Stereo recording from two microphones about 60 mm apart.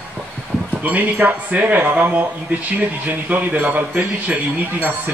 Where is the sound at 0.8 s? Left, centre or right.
Right.